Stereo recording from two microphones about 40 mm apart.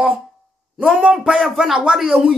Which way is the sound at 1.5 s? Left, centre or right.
Centre.